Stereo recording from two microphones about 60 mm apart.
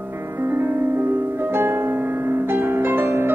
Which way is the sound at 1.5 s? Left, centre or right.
Right.